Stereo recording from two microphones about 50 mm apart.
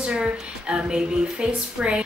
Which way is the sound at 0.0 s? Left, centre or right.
Centre.